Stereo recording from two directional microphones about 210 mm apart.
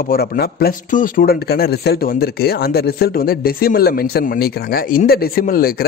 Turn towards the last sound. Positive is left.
turn(degrees=45)  # may be behind; listen again after turning